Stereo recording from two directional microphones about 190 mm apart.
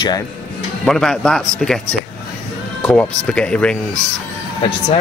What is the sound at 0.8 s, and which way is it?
Speech, 5° left (ahead or behind).